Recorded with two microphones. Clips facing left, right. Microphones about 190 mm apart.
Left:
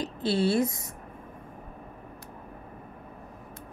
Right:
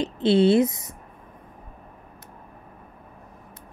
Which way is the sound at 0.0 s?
20° right (ahead or behind).